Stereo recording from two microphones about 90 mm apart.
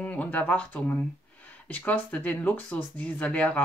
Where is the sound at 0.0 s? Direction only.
15° left (ahead or behind).